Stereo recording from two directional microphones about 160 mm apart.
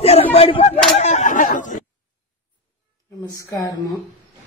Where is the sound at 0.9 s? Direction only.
45° left (ahead or behind).